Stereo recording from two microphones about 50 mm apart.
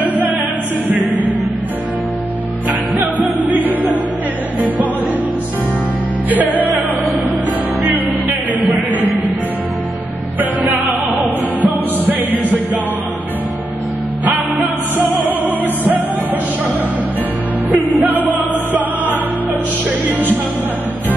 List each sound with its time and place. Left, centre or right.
0.0 s music: right
3.2 s music: right
6.3 s music: right
10.4 s music: right
14.2 s music: right
17.6 s music: right